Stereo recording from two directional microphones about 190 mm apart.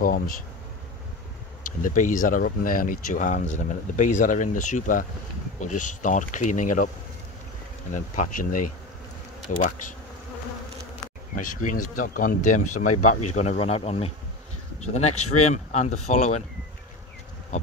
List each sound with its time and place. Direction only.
1.8 s speech: 45° left (ahead or behind)
7.9 s speech: 45° left (ahead or behind)
11.3 s speech: 45° left (ahead or behind)